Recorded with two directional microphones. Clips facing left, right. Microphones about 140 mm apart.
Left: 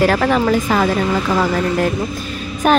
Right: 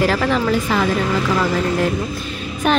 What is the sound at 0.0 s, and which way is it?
Speech, 50° left (ahead or behind).